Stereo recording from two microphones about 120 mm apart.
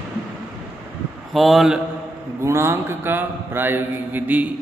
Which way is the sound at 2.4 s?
20° right (ahead or behind).